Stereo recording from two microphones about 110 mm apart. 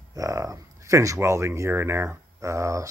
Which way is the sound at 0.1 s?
30° right (ahead or behind).